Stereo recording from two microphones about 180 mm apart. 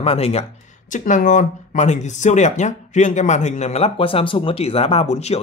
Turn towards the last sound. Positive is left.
turn(degrees=35)  # may be behind; listen again after turning